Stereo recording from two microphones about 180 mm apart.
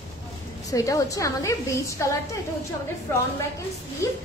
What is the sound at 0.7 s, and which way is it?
A woman's voice, 20° left (ahead or behind).